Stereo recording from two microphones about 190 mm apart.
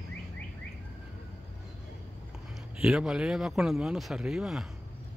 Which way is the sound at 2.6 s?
5° right (ahead or behind).